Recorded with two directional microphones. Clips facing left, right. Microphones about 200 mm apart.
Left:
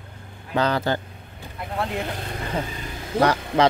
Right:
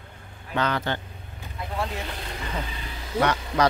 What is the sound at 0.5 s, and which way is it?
Speech, 35° left (ahead or behind).